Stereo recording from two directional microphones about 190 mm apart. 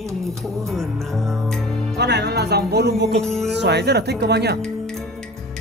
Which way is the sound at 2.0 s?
60° right (ahead or behind).